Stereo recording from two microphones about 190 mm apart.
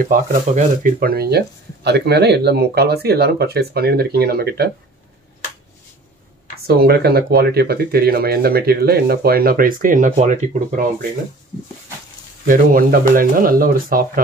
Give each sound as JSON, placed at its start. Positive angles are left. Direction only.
{"t": 0.1, "sound": "speech", "side_deg": -45}
{"t": 6.7, "sound": "speech", "side_deg": -55}
{"t": 12.4, "sound": "speech", "side_deg": -45}